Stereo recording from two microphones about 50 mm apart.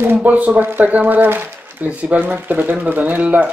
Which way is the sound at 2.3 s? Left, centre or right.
Right.